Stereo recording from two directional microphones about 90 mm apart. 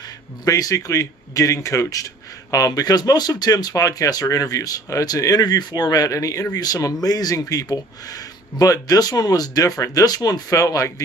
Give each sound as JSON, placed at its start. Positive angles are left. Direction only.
{"t": 0.5, "sound": "speech", "side_deg": 40}